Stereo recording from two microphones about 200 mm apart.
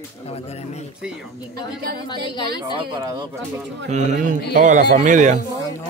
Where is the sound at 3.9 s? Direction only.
35° right (ahead or behind).